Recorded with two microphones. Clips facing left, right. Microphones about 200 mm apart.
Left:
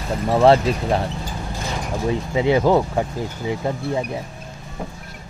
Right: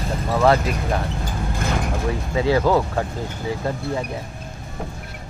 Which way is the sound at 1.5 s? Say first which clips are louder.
Right 4 dB; 55° right (ahead or behind).